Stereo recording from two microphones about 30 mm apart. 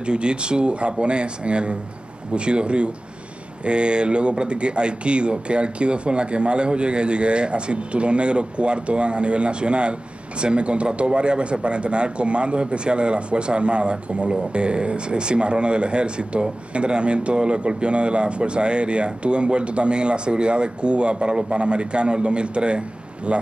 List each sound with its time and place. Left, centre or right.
0.0 s a man's voice: right